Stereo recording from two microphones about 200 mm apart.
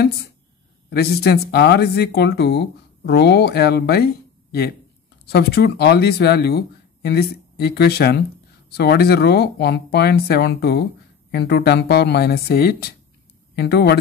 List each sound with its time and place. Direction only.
0.8 s speech: 50° left (ahead or behind)